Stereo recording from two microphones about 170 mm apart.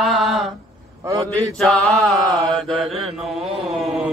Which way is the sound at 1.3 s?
5° left (ahead or behind).